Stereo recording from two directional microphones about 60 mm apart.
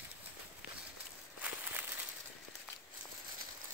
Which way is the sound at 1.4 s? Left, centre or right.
Right.